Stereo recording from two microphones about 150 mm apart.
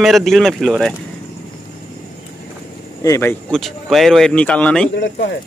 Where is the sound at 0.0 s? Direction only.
Centre (ahead or behind).